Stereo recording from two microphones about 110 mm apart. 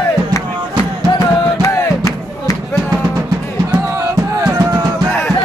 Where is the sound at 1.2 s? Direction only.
25° left (ahead or behind).